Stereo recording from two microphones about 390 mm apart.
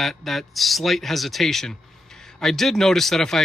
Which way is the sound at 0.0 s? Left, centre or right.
Centre.